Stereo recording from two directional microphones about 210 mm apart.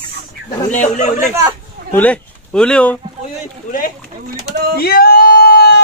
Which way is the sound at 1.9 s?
5° left (ahead or behind).